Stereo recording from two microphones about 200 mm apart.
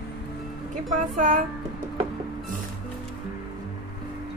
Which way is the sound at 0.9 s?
40° right (ahead or behind).